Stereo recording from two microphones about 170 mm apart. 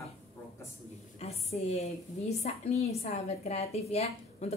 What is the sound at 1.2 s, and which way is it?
A woman's voice, 40° left (ahead or behind).